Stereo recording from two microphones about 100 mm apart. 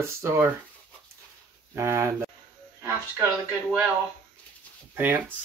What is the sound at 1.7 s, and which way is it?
Speech, 30° right (ahead or behind).